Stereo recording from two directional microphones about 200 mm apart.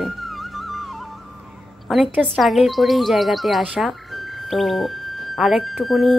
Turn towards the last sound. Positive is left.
turn(degrees=0)  # may be behind; listen again after turning